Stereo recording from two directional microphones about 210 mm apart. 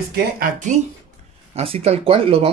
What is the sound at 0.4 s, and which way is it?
Speech, 35° right (ahead or behind).